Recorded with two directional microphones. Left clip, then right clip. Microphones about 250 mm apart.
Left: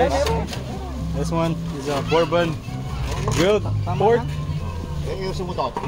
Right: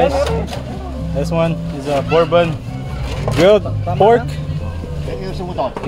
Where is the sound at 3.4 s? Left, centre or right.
Right.